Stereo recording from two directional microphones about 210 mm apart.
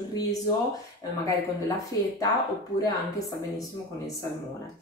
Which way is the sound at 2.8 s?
15° left (ahead or behind).